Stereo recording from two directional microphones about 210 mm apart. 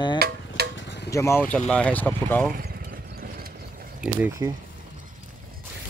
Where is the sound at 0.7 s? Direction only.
55° left (ahead or behind).